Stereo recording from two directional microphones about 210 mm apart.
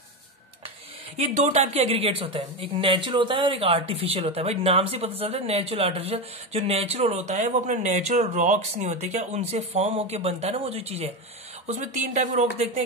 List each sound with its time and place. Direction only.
1.1 s speech: 30° right (ahead or behind)